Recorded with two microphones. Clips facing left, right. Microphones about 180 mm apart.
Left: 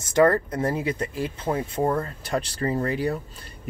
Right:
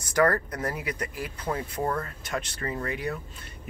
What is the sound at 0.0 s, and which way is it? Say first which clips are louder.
Speech: left 5 dB; 25° left (ahead or behind).